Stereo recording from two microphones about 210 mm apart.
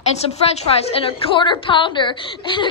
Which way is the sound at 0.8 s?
25° left (ahead or behind).